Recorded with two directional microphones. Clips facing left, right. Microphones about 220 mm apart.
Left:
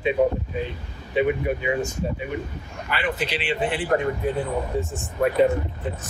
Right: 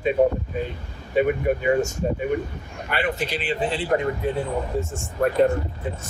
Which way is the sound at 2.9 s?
45° right (ahead or behind).